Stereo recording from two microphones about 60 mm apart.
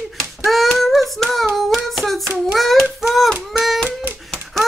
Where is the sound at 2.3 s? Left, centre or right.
Centre.